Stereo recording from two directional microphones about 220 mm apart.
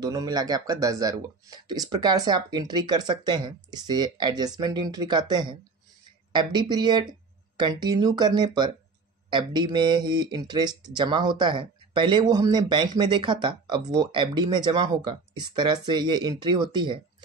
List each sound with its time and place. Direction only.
0.0 s speech: 20° right (ahead or behind)